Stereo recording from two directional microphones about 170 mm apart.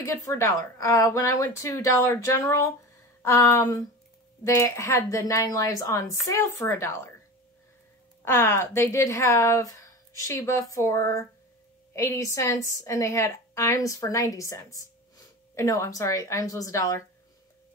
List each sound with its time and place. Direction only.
0.0 s a woman's voice: 15° left (ahead or behind)
8.3 s a woman's voice: 15° left (ahead or behind)